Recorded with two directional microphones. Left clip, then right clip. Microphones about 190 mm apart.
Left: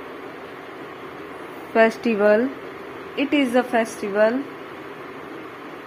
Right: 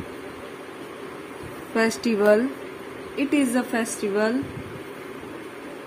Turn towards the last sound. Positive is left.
turn(degrees=-15)  # may be behind; listen again after turning